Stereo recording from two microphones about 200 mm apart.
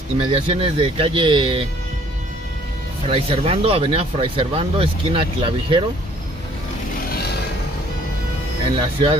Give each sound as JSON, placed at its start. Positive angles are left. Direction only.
{"t": 0.2, "sound": "speech", "side_deg": -25}
{"t": 3.1, "sound": "speech", "side_deg": -30}
{"t": 7.1, "sound": "vehicle", "side_deg": 50}
{"t": 8.7, "sound": "speech", "side_deg": -25}